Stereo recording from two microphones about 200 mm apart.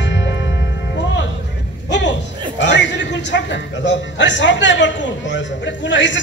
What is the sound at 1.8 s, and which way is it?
Music, 60° left (ahead or behind).